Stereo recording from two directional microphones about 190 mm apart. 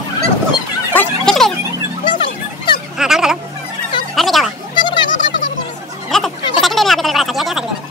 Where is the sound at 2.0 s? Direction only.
25° left (ahead or behind).